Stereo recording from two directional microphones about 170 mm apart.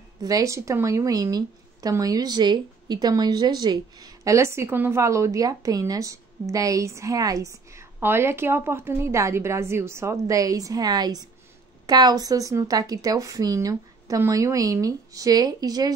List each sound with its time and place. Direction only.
0.2 s a woman's voice: 20° right (ahead or behind)